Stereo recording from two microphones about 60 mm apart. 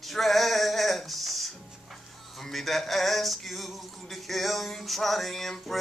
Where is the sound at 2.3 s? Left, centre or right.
Centre.